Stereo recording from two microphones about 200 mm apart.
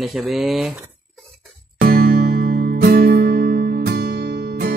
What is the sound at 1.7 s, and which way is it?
Music, 50° right (ahead or behind).